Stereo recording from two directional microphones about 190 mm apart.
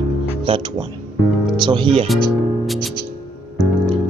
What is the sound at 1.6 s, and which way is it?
Speech, 25° right (ahead or behind).